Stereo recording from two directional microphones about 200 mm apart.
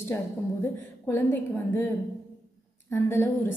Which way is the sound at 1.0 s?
10° left (ahead or behind).